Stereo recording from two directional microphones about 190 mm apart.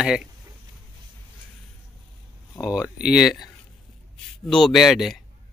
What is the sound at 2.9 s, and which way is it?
Speech, 5° right (ahead or behind).